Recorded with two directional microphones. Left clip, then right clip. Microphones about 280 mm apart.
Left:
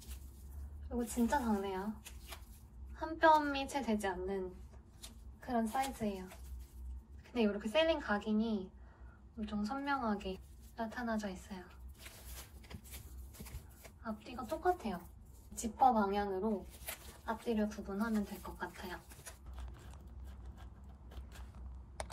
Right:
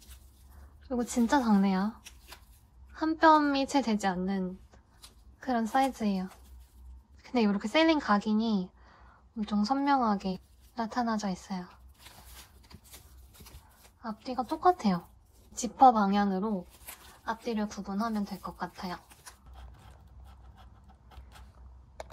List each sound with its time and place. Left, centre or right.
0.8 s a woman's voice: right
2.9 s a woman's voice: right
7.2 s a woman's voice: right
14.0 s a woman's voice: centre
18.8 s a sound: centre